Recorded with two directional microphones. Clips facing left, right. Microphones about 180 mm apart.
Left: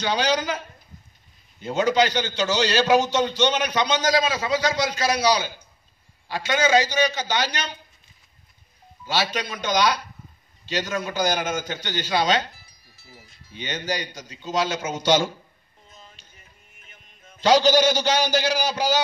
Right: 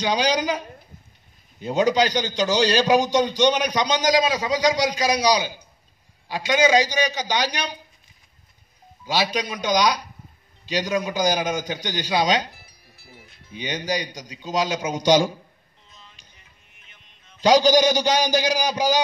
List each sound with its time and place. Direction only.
0.0 s a man's voice: 15° right (ahead or behind)
9.0 s a man's voice: 15° right (ahead or behind)
12.9 s a sound: 60° right (ahead or behind)
13.5 s a man's voice: 15° right (ahead or behind)
15.9 s music: 45° left (ahead or behind)
17.4 s a man's voice: 15° right (ahead or behind)